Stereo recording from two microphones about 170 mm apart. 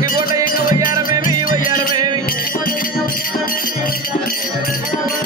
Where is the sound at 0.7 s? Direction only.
20° right (ahead or behind).